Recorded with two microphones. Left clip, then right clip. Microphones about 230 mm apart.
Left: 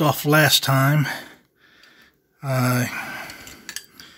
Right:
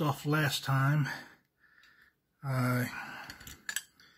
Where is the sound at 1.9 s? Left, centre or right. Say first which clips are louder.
Left 10 dB; left.